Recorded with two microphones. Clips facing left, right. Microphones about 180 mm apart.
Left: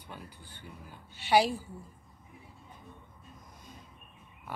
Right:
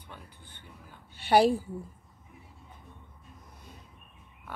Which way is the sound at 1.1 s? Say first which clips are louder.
Right 3 dB; 55° right (ahead or behind).